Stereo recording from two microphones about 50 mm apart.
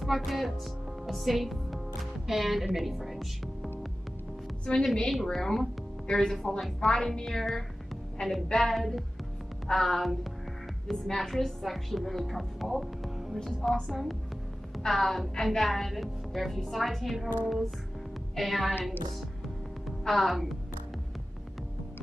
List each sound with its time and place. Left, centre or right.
0.0 s a woman's voice: centre
4.6 s a woman's voice: centre
5.1 s a woman's voice: centre
18.3 s a woman's voice: centre
20.1 s a woman's voice: centre